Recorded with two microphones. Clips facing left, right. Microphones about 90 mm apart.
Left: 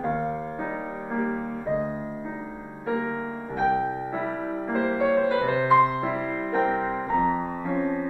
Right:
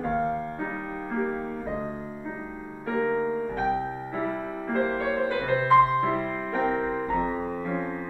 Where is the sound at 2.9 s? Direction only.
10° left (ahead or behind).